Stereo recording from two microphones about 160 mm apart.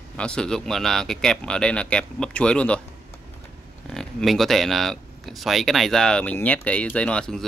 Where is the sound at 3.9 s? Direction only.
5° left (ahead or behind).